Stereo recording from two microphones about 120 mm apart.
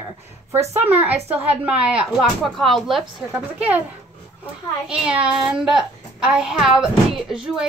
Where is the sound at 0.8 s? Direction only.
15° right (ahead or behind).